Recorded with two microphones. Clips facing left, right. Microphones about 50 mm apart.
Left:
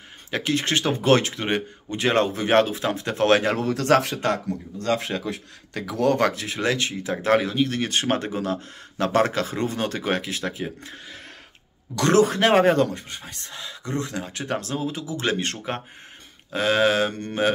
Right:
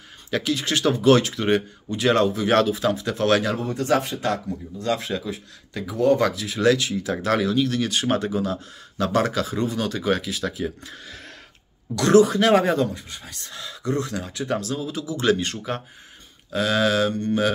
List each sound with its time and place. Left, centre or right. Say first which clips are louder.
0.3 s speech: even; left
3.5 s speech: left 2 dB; left
4.2 s speech: left 1 dB; left
6.2 s speech: even; left
6.6 s speech: right 5 dB; left
10.6 s speech: right 3 dB; left
13.1 s speech: left 1 dB; left
13.5 s speech: right 4 dB; left
14.3 s speech: right 3 dB; left
15.4 s speech: right 1 dB; left